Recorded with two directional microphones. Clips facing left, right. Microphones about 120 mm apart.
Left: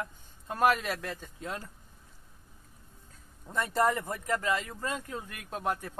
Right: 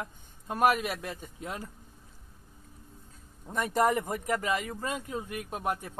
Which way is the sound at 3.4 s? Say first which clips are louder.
Right 1 dB; 15° right (ahead or behind).